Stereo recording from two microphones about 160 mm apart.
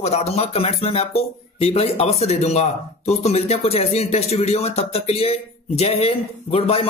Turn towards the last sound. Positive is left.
turn(degrees=35)  # may be behind; listen again after turning